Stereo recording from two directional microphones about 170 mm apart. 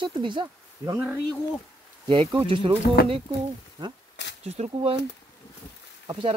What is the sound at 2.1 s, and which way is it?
Speech, 30° right (ahead or behind).